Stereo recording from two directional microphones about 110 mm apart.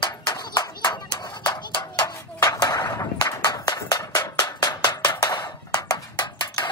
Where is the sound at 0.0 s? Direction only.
40° left (ahead or behind).